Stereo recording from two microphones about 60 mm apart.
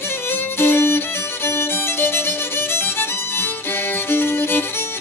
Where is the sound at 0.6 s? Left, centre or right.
Left.